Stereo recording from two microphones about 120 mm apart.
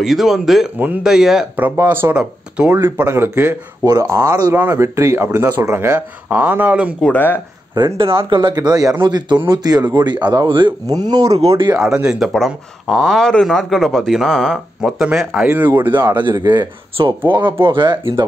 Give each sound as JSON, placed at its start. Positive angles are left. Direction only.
{"t": 0.0, "sound": "speech", "side_deg": 0}
{"t": 1.8, "sound": "speech", "side_deg": -20}
{"t": 2.1, "sound": "speech", "side_deg": -10}
{"t": 2.8, "sound": "speech", "side_deg": -20}
{"t": 3.8, "sound": "speech", "side_deg": -30}
{"t": 7.1, "sound": "speech", "side_deg": 15}
{"t": 8.2, "sound": "speech", "side_deg": -40}
{"t": 11.3, "sound": "speech", "side_deg": -55}
{"t": 11.8, "sound": "speech", "side_deg": -5}
{"t": 16.1, "sound": "speech", "side_deg": -35}